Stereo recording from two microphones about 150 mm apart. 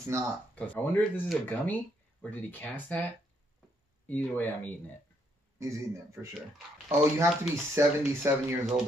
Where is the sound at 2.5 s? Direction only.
10° left (ahead or behind).